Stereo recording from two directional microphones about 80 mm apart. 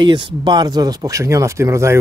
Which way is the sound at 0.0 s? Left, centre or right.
Right.